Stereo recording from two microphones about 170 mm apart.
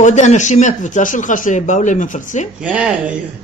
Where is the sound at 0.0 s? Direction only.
45° left (ahead or behind).